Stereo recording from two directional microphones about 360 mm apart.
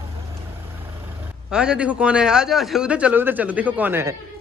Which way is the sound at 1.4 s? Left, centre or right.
Centre.